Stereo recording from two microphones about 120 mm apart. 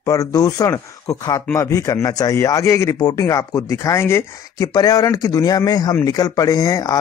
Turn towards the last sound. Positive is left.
turn(degrees=30)  # may be behind; listen again after turning